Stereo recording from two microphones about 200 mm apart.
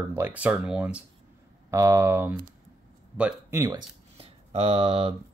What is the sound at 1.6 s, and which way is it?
Speech, 15° right (ahead or behind).